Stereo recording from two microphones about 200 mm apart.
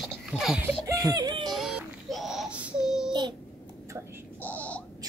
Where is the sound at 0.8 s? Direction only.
15° right (ahead or behind).